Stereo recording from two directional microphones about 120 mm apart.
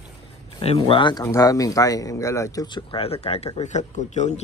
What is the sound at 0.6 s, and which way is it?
Speech, 55° left (ahead or behind).